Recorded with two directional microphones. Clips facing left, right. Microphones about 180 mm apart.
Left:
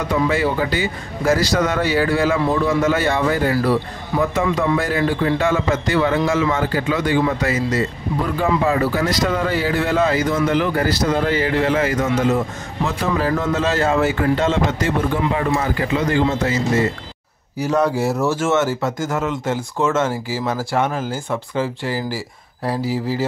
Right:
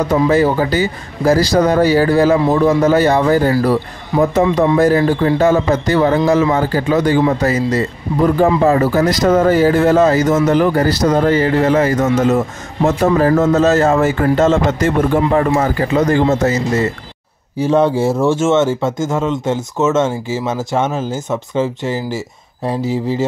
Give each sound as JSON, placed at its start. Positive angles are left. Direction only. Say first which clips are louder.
{"t": 0.0, "sound": "speech", "louder": "right 6 dB", "side_deg": -40}
{"t": 17.6, "sound": "speech", "louder": "right 5 dB", "side_deg": -25}